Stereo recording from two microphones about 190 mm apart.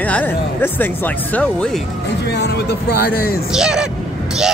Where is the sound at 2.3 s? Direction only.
60° left (ahead or behind).